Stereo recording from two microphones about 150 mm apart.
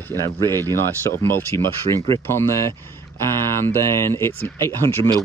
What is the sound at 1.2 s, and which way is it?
Speech, 15° left (ahead or behind).